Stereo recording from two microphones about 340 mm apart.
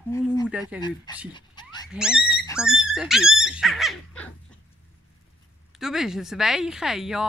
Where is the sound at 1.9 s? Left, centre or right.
Centre.